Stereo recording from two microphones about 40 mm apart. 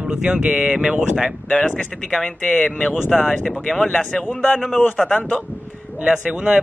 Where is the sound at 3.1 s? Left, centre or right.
Centre.